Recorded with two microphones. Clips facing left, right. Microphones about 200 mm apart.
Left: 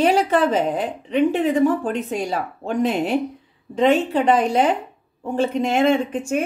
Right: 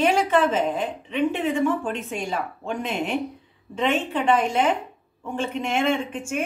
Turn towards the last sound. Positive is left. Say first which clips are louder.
# left 6 dB
turn(degrees=40)  # may be behind; listen again after turning